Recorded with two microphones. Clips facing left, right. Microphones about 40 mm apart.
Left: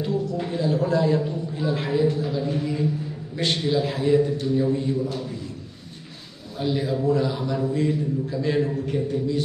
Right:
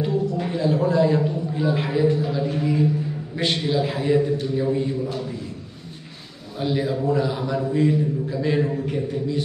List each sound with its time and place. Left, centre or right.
0.0 s a sound: centre
3.3 s a man's voice: centre
6.6 s a man's voice: centre